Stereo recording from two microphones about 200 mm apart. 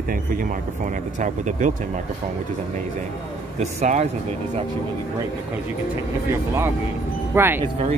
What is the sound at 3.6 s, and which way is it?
Speech, 35° right (ahead or behind).